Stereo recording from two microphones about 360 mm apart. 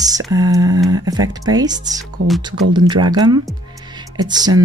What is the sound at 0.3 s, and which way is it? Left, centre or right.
Speech, centre.